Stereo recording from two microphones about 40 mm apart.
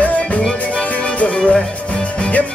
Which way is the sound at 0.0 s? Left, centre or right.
Left.